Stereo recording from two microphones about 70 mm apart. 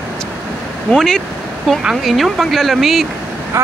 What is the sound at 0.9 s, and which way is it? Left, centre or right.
Speech, centre.